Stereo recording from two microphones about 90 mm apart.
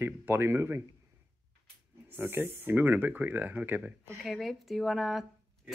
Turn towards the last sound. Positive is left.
turn(degrees=-5)  # may be behind; listen again after turning